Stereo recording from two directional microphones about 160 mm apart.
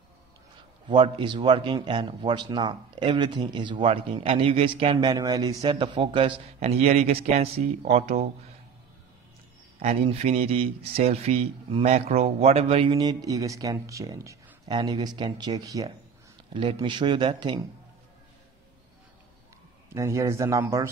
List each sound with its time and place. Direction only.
0.8 s speech: 30° right (ahead or behind)
9.8 s speech: 40° right (ahead or behind)
12.9 s speech: 25° right (ahead or behind)
19.9 s speech: 20° right (ahead or behind)